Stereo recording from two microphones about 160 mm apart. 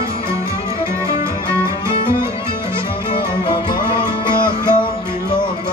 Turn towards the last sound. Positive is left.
turn(degrees=30)  # may be behind; listen again after turning